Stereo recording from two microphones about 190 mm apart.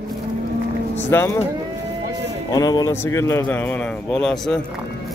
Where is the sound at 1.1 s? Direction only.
15° left (ahead or behind).